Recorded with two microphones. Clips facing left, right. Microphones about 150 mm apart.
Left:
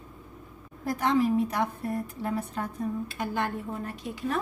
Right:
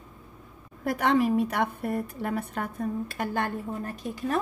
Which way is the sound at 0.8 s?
65° right (ahead or behind).